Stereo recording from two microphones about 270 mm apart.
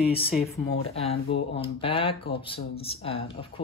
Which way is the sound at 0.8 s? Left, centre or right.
Left.